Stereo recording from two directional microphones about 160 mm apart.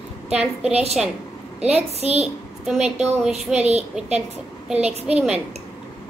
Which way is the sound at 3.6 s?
40° right (ahead or behind).